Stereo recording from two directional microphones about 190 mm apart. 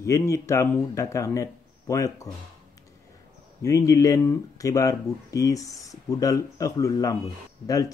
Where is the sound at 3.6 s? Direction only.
15° left (ahead or behind).